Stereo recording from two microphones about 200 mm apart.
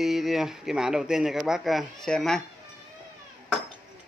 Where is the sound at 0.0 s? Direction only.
Centre (ahead or behind).